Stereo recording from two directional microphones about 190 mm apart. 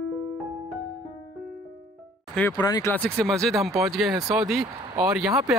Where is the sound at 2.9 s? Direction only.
5° left (ahead or behind).